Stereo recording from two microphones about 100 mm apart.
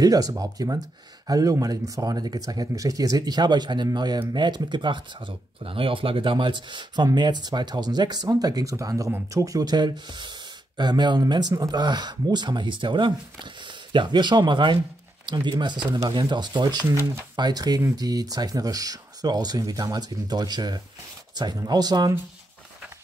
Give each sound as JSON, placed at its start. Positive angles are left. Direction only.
{"t": 0.0, "sound": "speech", "side_deg": -40}